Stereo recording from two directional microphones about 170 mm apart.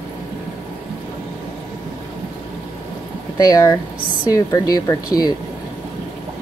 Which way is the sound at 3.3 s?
20° left (ahead or behind).